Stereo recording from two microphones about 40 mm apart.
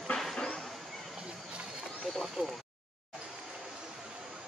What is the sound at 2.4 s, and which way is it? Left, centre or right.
Speech, right.